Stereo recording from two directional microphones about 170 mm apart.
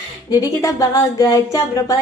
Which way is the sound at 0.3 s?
20° left (ahead or behind).